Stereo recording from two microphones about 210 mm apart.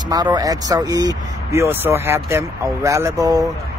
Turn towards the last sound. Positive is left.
turn(degrees=-15)  # may be behind; listen again after turning